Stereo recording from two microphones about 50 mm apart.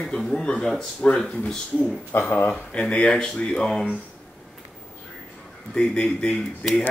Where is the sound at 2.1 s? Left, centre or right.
Left.